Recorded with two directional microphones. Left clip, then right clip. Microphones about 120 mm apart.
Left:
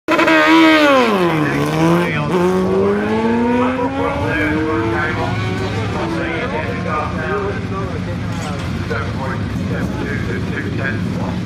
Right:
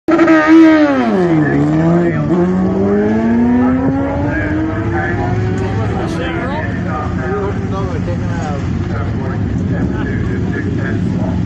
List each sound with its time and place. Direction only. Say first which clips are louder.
0.1 s vehicle: right 2 dB; 45° left (ahead or behind)